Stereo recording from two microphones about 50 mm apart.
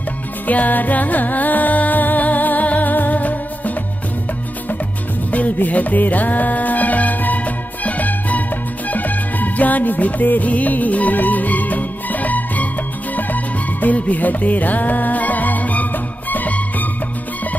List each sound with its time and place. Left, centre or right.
0.5 s music: left
5.3 s music: left